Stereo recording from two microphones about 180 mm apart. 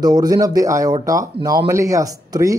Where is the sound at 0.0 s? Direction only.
20° right (ahead or behind).